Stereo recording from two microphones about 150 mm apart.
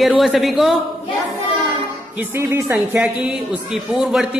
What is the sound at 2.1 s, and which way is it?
A man's voice, 15° right (ahead or behind).